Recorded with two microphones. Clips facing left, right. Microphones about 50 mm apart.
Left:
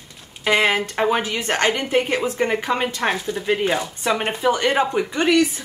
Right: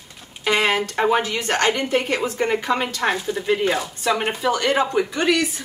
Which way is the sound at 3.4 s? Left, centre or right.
Centre.